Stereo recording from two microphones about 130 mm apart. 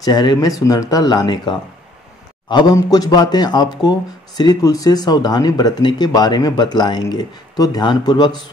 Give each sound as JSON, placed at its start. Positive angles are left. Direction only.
{"t": 0.0, "sound": "speech", "side_deg": 30}